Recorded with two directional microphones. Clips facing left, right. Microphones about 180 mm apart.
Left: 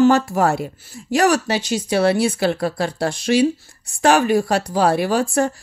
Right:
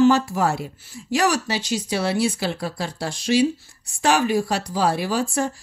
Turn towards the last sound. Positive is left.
turn(degrees=60)  # may be behind; listen again after turning